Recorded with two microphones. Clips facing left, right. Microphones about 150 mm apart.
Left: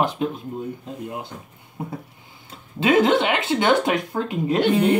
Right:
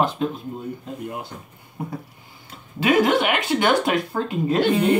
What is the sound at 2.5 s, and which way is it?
Speech, 25° left (ahead or behind).